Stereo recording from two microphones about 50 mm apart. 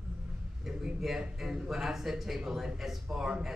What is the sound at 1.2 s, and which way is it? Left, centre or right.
Speech, centre.